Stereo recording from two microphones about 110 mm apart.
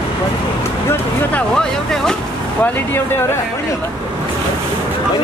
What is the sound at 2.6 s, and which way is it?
Speech, 20° left (ahead or behind).